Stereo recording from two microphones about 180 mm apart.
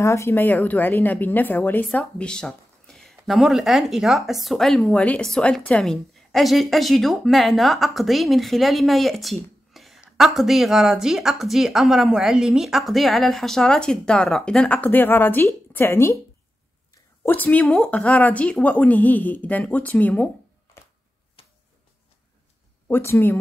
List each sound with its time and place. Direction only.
0.0 s speech: 15° left (ahead or behind)
17.2 s speech: 10° left (ahead or behind)
21.4 s a sound: 30° left (ahead or behind)
22.8 s speech: 10° left (ahead or behind)